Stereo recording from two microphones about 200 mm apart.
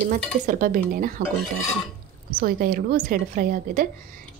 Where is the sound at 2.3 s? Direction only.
45° right (ahead or behind).